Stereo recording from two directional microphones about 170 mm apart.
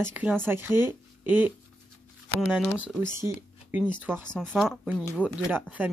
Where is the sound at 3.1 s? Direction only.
15° right (ahead or behind).